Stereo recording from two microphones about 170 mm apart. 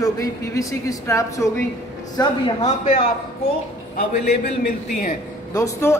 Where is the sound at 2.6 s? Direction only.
40° left (ahead or behind).